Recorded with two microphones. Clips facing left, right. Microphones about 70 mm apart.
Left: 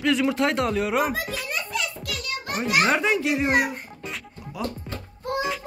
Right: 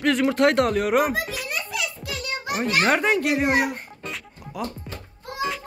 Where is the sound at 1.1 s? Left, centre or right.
Centre.